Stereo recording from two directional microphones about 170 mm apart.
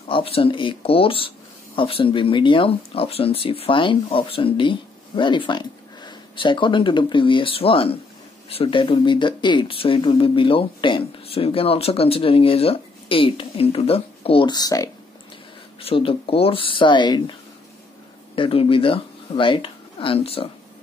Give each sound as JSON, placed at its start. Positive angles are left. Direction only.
{"t": 0.1, "sound": "speech", "side_deg": 30}
{"t": 15.8, "sound": "speech", "side_deg": 30}